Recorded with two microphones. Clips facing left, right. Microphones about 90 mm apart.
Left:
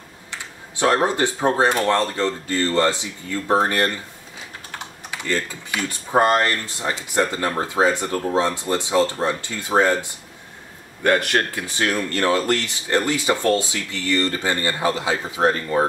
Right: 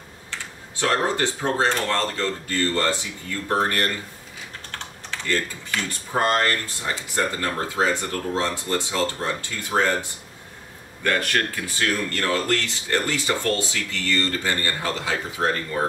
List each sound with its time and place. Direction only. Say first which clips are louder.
0.3 s speech: left 1 dB; 20° left (ahead or behind)
11.1 s speech: left 4 dB; 20° left (ahead or behind)